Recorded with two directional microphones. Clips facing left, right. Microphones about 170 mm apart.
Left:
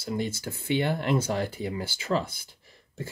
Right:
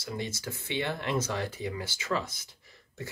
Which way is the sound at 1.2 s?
30° left (ahead or behind).